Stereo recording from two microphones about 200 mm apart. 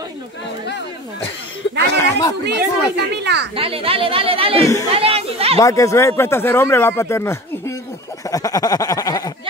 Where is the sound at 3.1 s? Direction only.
60° right (ahead or behind).